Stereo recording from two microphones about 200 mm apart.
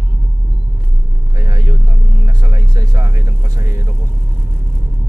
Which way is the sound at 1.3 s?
20° right (ahead or behind).